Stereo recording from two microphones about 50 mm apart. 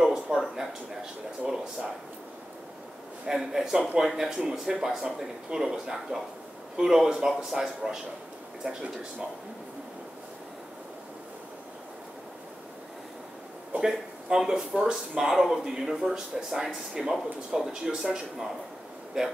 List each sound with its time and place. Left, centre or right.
0.0 s speech: centre
3.3 s speech: centre
13.7 s speech: centre